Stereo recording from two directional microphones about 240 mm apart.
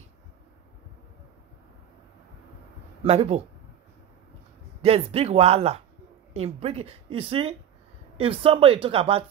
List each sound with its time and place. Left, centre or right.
3.0 s speech: right
4.8 s speech: right